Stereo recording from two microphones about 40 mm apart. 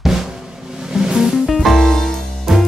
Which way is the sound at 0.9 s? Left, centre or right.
Centre.